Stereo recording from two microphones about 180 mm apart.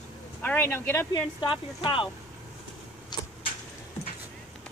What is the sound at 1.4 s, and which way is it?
Speech, 25° left (ahead or behind).